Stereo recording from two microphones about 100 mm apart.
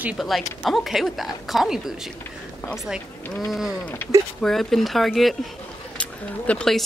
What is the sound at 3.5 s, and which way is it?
Speech, 5° right (ahead or behind).